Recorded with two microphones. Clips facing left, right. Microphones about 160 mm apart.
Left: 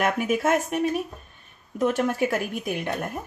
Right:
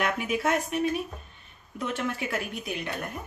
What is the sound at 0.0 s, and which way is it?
Speech, 45° left (ahead or behind).